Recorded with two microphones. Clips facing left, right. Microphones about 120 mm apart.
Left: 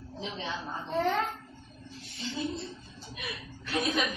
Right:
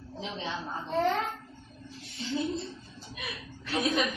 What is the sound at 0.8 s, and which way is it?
Speech, centre (ahead or behind).